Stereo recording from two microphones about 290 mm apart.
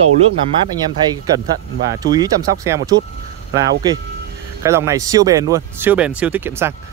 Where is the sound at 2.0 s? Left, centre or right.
Centre.